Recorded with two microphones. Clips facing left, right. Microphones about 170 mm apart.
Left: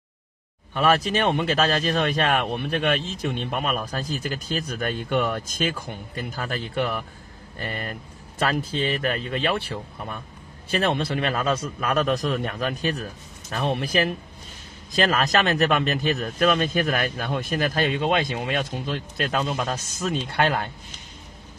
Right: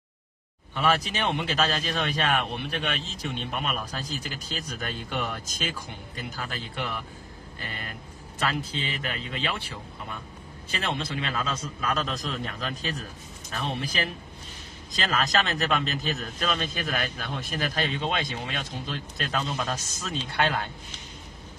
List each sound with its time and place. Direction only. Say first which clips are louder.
0.7 s a man's voice: left 5 dB; 55° left (ahead or behind)